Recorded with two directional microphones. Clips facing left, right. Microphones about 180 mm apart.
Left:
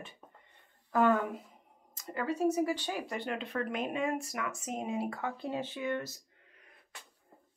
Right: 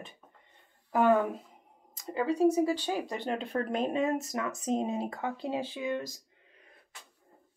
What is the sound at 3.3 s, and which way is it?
Speech, 35° right (ahead or behind).